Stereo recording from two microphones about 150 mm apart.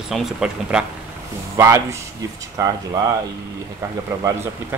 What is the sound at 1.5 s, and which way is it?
Speech, 20° right (ahead or behind).